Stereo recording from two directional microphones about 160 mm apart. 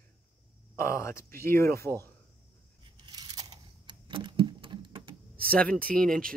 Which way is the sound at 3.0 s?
25° right (ahead or behind).